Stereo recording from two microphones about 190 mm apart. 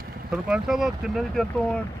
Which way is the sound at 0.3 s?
5° right (ahead or behind).